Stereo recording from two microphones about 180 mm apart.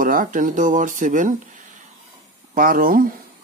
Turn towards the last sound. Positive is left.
turn(degrees=-50)  # may be behind; listen again after turning